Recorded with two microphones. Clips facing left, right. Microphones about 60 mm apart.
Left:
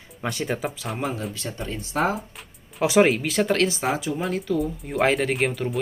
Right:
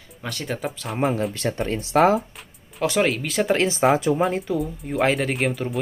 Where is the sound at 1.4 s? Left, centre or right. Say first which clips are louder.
Right 7 dB; right.